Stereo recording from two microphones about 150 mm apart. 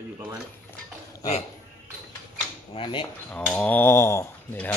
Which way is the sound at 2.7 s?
35° left (ahead or behind).